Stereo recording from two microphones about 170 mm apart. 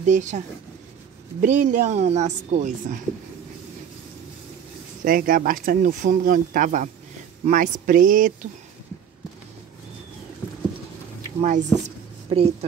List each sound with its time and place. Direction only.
0.0 s speech: 45° right (ahead or behind)
1.4 s speech: 50° right (ahead or behind)
5.0 s speech: 55° right (ahead or behind)
11.4 s speech: 45° right (ahead or behind)
12.3 s speech: 35° right (ahead or behind)